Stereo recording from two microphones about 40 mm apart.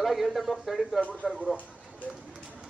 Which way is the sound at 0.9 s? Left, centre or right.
Left.